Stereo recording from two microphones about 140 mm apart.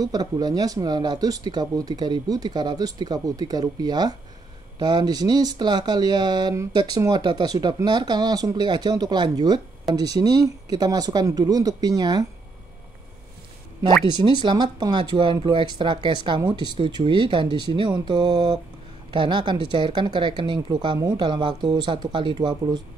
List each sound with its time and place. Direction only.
0.0 s speech: 30° right (ahead or behind)
14.1 s speech: 30° right (ahead or behind)